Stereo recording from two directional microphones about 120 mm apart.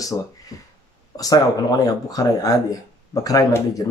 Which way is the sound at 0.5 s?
30° left (ahead or behind).